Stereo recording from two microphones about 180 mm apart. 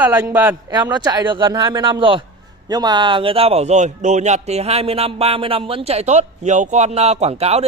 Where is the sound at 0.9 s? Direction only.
25° right (ahead or behind).